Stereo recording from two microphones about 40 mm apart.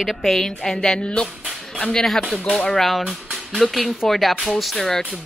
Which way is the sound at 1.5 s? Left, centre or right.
Centre.